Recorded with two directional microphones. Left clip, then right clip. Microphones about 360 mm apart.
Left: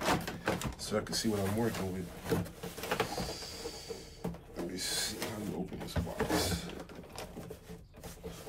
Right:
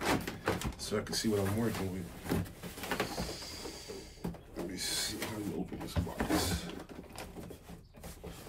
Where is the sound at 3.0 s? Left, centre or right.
Centre.